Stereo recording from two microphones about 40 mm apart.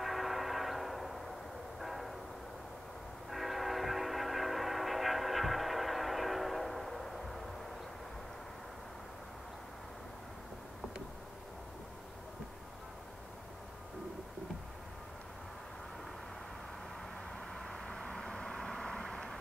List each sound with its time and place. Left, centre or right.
0.0 s train: centre
1.8 s vehicle: centre
3.3 s train: centre
17.6 s vehicle: centre